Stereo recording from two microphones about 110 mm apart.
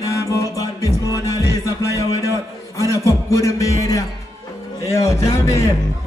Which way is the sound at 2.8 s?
30° left (ahead or behind).